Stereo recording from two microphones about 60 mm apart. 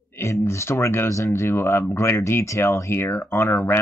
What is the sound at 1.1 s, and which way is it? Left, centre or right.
Speech, left.